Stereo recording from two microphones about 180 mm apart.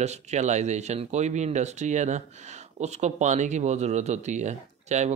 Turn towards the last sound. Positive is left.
turn(degrees=-40)  # may be behind; listen again after turning